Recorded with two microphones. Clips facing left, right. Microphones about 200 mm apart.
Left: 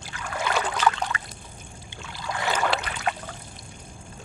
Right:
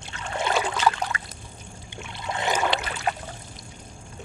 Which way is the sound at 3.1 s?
40° right (ahead or behind).